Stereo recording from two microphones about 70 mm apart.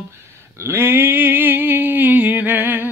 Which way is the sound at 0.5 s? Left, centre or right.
Right.